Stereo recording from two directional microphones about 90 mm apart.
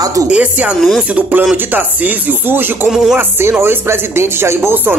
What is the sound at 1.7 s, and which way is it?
Speech, 20° right (ahead or behind).